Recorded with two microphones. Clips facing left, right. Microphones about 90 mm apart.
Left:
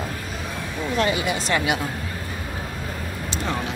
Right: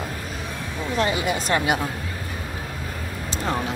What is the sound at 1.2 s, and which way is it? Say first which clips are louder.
Speech: right 1 dB; 40° right (ahead or behind).